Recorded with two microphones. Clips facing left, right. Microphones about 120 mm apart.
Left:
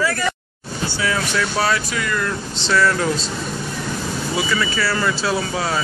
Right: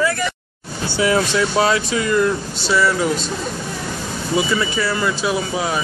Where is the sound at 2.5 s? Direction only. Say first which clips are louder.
Even; 10° right (ahead or behind).